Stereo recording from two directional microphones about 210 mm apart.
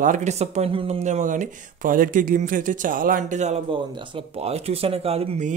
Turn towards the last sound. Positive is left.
turn(degrees=-30)  # may be behind; listen again after turning